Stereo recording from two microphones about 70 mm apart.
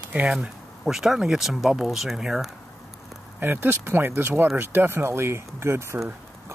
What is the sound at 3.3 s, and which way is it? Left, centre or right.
Speech, right.